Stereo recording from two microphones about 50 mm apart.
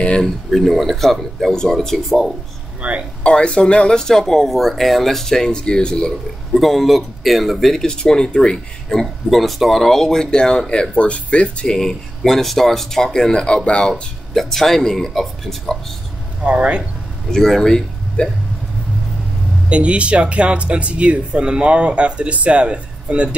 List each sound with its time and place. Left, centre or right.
0.2 s speech: centre
2.8 s speech: right
3.3 s speech: left
6.5 s speech: centre
7.8 s speech: centre
9.0 s speech: centre; by 14.0 s left
14.3 s speech: centre
16.4 s speech: right
17.3 s speech: centre
19.7 s speech: right